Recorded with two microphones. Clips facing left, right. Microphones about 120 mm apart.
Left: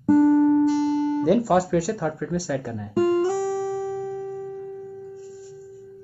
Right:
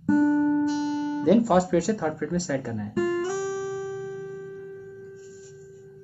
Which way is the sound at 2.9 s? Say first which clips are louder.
Left 6 dB; 55° left (ahead or behind).